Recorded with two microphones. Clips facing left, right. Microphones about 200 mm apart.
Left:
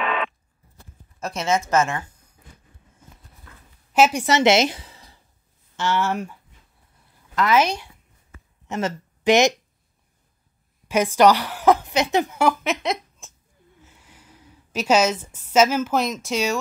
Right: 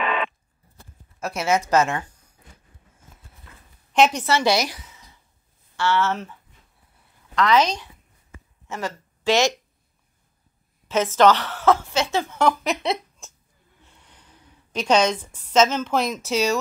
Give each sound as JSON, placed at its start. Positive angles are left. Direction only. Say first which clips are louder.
{"t": 0.0, "sound": "a sound", "louder": "even", "side_deg": 0}
{"t": 1.2, "sound": "a woman's voice", "louder": "right 1 dB", "side_deg": -5}
{"t": 3.9, "sound": "a woman's voice", "louder": "left 1 dB", "side_deg": 10}
{"t": 5.8, "sound": "speech", "louder": "right 1 dB", "side_deg": 15}
{"t": 7.3, "sound": "speech", "louder": "even", "side_deg": 5}
{"t": 8.6, "sound": "speech", "louder": "left 4 dB", "side_deg": 20}
{"t": 10.9, "sound": "a woman's voice", "louder": "left 1 dB", "side_deg": 10}
{"t": 12.4, "sound": "a sound", "louder": "even", "side_deg": 5}
{"t": 16.3, "sound": "speech", "louder": "right 2 dB", "side_deg": 0}